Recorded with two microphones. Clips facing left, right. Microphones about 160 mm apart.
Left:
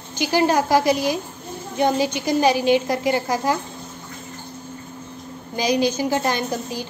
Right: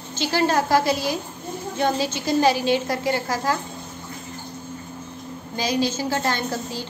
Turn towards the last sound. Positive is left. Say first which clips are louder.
# left 2 dB
turn(degrees=15)  # may be behind; listen again after turning